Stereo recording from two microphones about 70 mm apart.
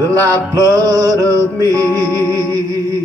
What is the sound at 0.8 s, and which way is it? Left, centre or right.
Mantra, right.